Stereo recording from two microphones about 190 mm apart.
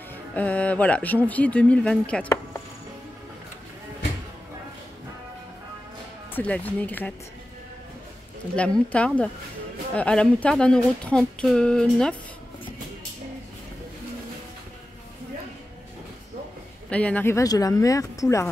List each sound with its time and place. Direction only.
0.3 s speech: 5° left (ahead or behind)
6.3 s speech: 10° left (ahead or behind)
8.5 s a woman's voice: 5° left (ahead or behind)
16.9 s speech: 5° left (ahead or behind)